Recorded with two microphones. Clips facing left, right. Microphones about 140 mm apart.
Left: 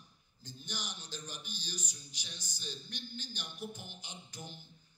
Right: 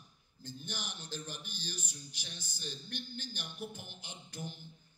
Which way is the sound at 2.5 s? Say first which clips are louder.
Right 3 dB; 55° right (ahead or behind).